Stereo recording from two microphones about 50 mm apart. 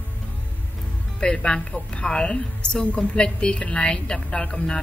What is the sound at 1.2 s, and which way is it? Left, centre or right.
A woman's voice, centre.